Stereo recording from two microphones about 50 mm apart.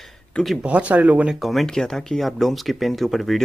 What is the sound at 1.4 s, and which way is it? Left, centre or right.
Speech, centre.